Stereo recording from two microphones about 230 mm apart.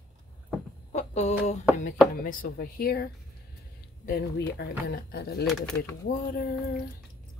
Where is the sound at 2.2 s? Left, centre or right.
Left.